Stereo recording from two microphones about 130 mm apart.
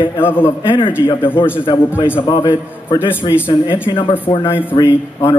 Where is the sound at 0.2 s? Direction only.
15° left (ahead or behind).